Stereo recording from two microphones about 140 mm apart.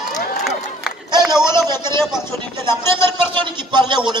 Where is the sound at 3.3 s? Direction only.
35° right (ahead or behind).